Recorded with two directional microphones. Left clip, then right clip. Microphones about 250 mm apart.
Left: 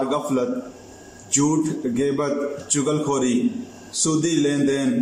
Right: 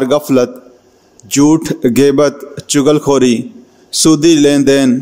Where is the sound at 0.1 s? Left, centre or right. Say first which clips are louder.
Right 11 dB; right.